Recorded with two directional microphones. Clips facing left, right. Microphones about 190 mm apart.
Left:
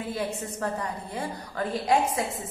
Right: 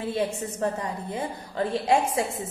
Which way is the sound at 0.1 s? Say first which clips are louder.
Right 5 dB; 20° right (ahead or behind).